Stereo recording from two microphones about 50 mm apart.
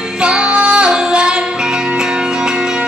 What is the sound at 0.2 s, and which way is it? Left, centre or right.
Music, right.